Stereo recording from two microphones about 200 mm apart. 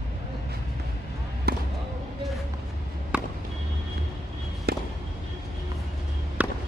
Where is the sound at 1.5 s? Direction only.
50° right (ahead or behind).